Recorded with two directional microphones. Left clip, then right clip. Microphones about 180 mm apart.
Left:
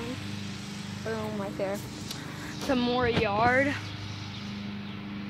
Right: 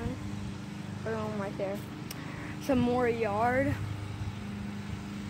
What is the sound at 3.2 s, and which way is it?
Speech, 20° left (ahead or behind).